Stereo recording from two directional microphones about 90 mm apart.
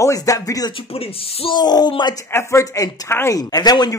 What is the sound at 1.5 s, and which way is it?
Speech, 50° left (ahead or behind).